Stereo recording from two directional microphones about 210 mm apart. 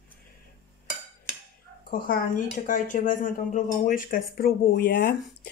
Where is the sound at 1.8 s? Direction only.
40° left (ahead or behind).